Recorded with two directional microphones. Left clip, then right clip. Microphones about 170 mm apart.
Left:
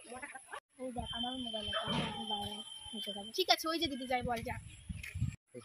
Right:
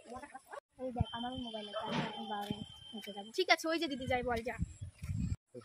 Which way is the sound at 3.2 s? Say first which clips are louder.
Right 1 dB; 20° right (ahead or behind).